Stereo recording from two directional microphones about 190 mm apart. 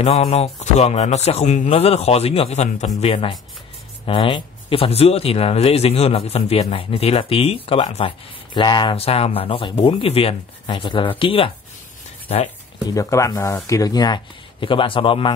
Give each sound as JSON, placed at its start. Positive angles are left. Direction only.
{"t": 0.0, "sound": "speech", "side_deg": 35}
{"t": 12.8, "sound": "speech", "side_deg": 20}